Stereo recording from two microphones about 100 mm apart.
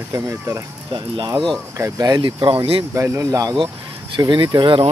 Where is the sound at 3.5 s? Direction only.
55° right (ahead or behind).